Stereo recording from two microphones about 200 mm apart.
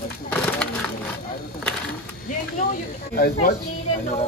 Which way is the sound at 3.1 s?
50° left (ahead or behind).